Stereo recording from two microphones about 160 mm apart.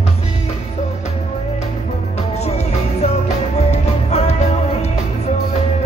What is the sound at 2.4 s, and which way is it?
Music, 40° left (ahead or behind).